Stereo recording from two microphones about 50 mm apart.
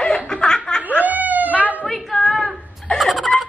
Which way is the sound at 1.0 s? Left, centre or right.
Right.